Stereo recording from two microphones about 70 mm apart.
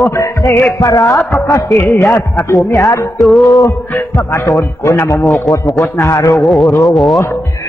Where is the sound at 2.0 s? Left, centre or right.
Left.